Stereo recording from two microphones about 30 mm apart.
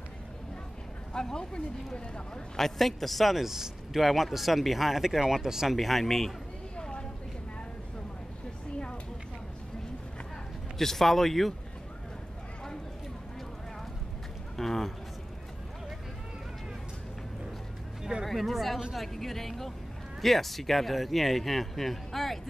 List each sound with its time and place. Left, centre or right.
1.1 s speech: left
2.5 s speech: centre
5.8 s speech: centre
6.8 s a sound: left
10.8 s speech: centre
14.6 s speech: centre
18.2 s speech: centre